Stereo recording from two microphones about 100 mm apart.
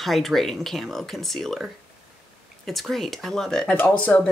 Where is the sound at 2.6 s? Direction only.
Centre (ahead or behind).